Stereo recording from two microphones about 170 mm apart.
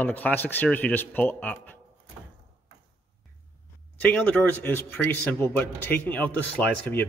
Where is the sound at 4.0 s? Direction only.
10° left (ahead or behind).